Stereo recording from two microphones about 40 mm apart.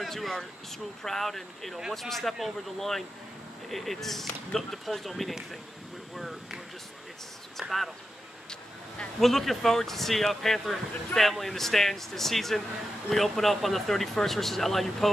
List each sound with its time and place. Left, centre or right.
0.0 s speech: centre
8.5 s vehicle: left
9.2 s speech: centre